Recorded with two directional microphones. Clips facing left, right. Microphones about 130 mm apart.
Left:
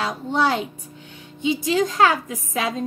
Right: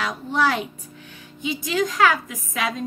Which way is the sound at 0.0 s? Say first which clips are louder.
Left 1 dB; 25° left (ahead or behind).